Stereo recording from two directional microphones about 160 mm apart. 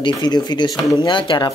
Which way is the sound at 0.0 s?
25° left (ahead or behind).